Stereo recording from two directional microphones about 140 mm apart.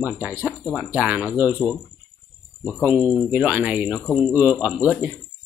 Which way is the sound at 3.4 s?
10° right (ahead or behind).